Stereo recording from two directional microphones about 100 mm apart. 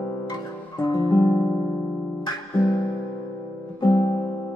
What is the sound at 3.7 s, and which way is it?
Music, 45° left (ahead or behind).